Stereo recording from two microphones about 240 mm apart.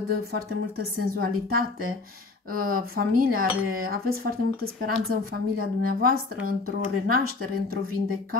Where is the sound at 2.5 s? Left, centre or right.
Right.